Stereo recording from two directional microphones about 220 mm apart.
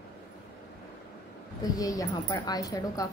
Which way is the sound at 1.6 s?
15° left (ahead or behind).